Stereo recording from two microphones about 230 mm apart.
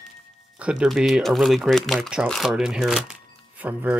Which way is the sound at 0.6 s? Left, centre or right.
Centre.